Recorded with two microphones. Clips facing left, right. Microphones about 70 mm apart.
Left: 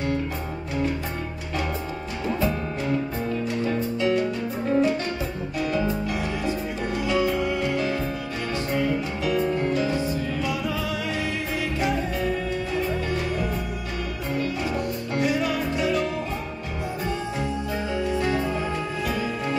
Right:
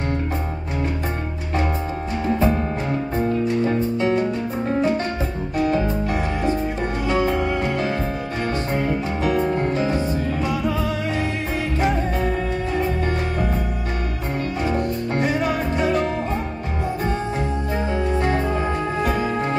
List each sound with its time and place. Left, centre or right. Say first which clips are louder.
2.2 s music: right 5 dB; right
11.8 s music: right 4 dB; right
14.7 s music: right 5 dB; right
17.9 s music: right 2 dB; right